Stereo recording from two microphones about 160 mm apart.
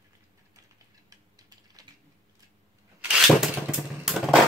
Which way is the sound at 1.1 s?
25° right (ahead or behind).